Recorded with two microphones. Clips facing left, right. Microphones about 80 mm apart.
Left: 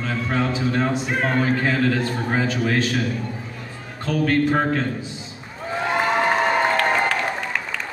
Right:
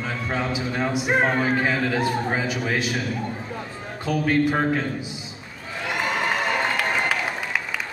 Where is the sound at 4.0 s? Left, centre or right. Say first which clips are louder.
Left 1 dB; centre.